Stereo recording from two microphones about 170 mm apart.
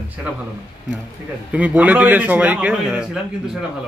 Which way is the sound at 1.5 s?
10° right (ahead or behind).